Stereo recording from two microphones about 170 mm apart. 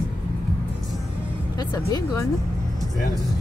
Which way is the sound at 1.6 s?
25° left (ahead or behind).